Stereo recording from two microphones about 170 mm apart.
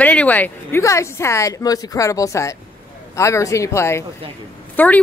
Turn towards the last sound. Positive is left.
turn(degrees=10)  # may be behind; listen again after turning